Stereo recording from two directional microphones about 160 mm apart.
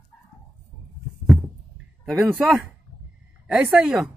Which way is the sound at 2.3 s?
10° right (ahead or behind).